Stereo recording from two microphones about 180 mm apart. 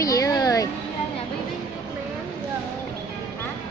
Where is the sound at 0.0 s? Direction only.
20° left (ahead or behind).